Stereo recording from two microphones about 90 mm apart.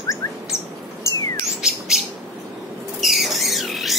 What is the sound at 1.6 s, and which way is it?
Chirp, 5° right (ahead or behind).